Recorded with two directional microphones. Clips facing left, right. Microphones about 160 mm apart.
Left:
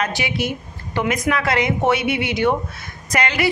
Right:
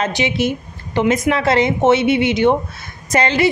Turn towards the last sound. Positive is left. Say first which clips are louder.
# right 5 dB
turn(degrees=-25)  # may be behind; listen again after turning